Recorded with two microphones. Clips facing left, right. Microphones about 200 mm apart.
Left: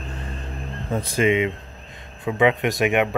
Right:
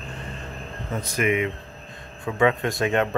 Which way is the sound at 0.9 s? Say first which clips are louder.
Left 4 dB; 30° left (ahead or behind).